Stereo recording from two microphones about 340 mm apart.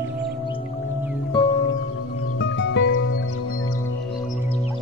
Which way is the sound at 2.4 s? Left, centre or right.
Left.